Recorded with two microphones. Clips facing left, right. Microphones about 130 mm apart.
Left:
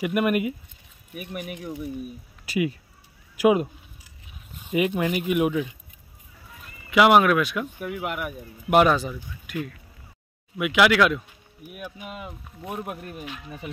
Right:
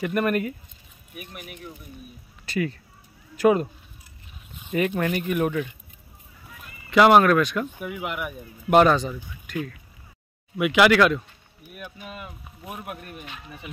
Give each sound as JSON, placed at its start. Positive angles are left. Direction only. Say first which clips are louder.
{"t": 0.0, "sound": "speech", "louder": "left 1 dB", "side_deg": 10}
{"t": 1.4, "sound": "speech", "louder": "left 8 dB", "side_deg": 70}
{"t": 2.4, "sound": "speech", "louder": "left 2 dB", "side_deg": 10}
{"t": 4.6, "sound": "speech", "louder": "left 1 dB", "side_deg": 5}
{"t": 6.9, "sound": "speech", "louder": "right 1 dB", "side_deg": 5}
{"t": 10.6, "sound": "speech", "louder": "right 2 dB", "side_deg": 0}
{"t": 11.7, "sound": "speech", "louder": "left 2 dB", "side_deg": 15}